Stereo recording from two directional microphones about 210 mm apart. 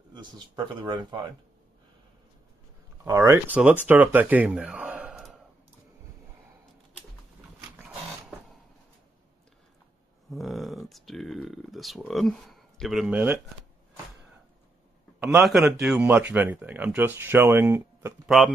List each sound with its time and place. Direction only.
0.1 s speech: 20° right (ahead or behind)
3.0 s speech: 15° right (ahead or behind)
10.3 s speech: centre (ahead or behind)
15.1 s a man's voice: 10° right (ahead or behind)